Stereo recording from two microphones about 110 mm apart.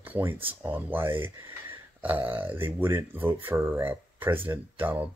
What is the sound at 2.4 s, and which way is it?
Speech, 20° right (ahead or behind).